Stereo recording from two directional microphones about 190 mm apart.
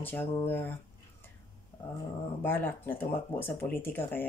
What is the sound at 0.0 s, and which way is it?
Speech, 10° left (ahead or behind).